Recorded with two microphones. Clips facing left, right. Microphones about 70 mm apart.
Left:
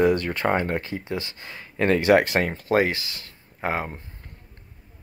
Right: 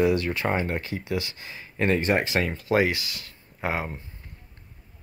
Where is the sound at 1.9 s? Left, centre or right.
Left.